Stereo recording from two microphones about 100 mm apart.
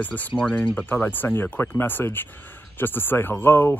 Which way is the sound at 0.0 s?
15° left (ahead or behind).